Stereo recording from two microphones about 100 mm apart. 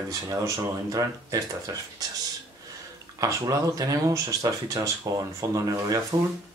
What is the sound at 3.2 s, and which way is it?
Speech, 35° right (ahead or behind).